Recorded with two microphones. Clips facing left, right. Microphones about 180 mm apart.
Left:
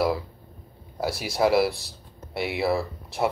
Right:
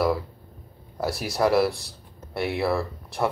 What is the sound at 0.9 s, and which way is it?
Speech, centre (ahead or behind).